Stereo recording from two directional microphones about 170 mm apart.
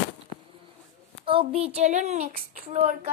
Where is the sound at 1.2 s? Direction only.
35° right (ahead or behind); by 2.6 s 55° right (ahead or behind).